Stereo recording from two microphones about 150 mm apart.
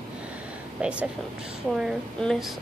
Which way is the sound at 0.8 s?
5° right (ahead or behind).